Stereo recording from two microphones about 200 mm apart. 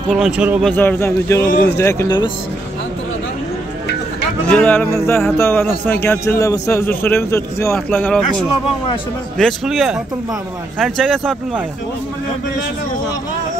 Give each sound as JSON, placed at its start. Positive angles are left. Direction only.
{"t": 0.1, "sound": "a man's voice", "side_deg": -5}
{"t": 1.5, "sound": "speech", "side_deg": 45}
{"t": 1.8, "sound": "a man's voice", "side_deg": 15}
{"t": 4.5, "sound": "a man's voice", "side_deg": 5}